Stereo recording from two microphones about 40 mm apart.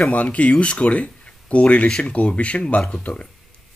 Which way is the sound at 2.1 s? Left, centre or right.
Left.